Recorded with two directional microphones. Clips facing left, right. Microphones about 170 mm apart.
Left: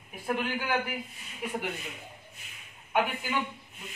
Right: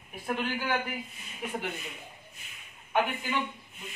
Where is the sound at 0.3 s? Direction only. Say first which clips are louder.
Left 1 dB; 10° left (ahead or behind).